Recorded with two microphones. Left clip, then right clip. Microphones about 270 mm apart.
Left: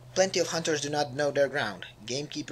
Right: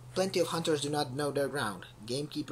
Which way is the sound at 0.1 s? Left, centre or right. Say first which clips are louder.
Left 4 dB; centre.